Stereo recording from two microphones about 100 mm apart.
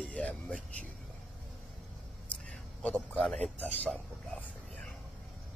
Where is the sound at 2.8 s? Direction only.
10° left (ahead or behind).